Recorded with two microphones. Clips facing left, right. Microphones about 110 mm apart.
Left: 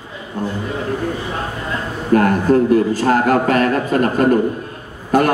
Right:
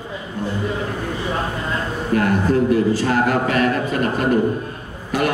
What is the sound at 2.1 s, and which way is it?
A man's voice, 45° left (ahead or behind).